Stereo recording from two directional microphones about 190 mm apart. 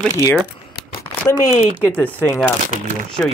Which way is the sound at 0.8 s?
60° left (ahead or behind).